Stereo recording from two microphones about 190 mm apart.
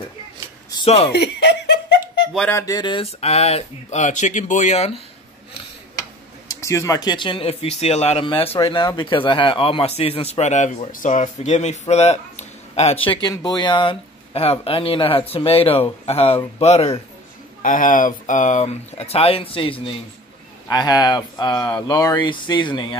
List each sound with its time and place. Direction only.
0.8 s speech: 35° left (ahead or behind)
1.1 s speech: 60° left (ahead or behind)
2.3 s music: 5° left (ahead or behind)
2.6 s speech: 20° left (ahead or behind); by 4.9 s 35° left (ahead or behind)
6.6 s speech: 15° left (ahead or behind); by 17.0 s 30° left (ahead or behind)
17.6 s speech: 45° left (ahead or behind); by 22.9 s 25° left (ahead or behind)